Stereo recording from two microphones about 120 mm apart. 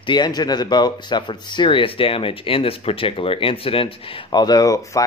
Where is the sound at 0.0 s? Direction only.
40° left (ahead or behind).